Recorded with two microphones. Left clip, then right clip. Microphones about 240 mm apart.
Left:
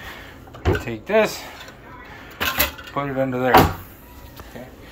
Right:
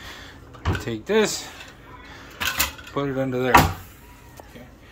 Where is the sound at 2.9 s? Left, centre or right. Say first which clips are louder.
Left 2 dB; right.